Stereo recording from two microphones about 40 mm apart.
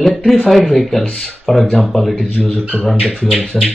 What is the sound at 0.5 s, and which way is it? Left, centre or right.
Speech, centre.